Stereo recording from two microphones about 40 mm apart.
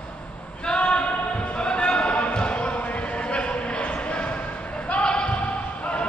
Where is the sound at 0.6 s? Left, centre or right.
Left.